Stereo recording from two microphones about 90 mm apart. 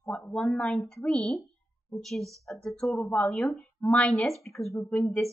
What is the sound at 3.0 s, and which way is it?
A woman's voice, 15° left (ahead or behind).